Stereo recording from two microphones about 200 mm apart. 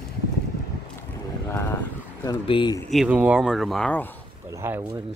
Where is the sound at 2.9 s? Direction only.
5° right (ahead or behind).